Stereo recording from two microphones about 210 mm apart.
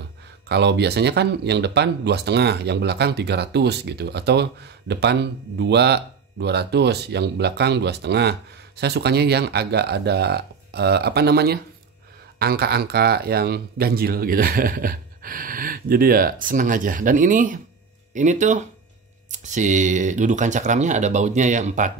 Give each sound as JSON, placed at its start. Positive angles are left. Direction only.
{"t": 0.5, "sound": "speech", "side_deg": -55}